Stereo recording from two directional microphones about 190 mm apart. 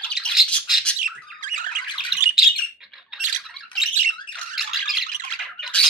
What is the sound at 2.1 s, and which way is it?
Bird, centre (ahead or behind).